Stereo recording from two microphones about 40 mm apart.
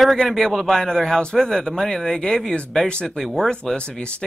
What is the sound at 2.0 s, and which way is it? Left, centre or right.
Speech, centre.